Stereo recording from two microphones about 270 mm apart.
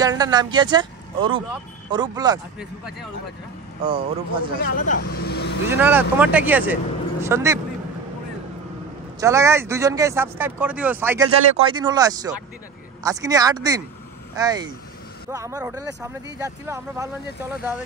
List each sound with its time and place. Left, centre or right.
0.0 s speech: centre
3.8 s speech: centre
4.7 s speech: left
5.7 s speech: centre
9.2 s speech: centre